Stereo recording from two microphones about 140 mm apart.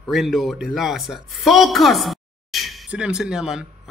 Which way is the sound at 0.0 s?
Centre (ahead or behind).